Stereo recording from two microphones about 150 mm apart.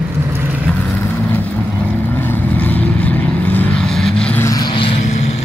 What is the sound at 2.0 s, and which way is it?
Vehicle, 15° left (ahead or behind).